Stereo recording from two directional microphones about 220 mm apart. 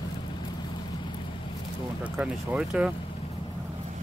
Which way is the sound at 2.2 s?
5° right (ahead or behind).